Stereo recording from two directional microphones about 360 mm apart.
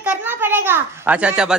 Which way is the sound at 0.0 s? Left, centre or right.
Centre.